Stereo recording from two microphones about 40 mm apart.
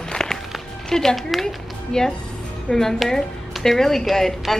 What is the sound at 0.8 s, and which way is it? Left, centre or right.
Speech, centre.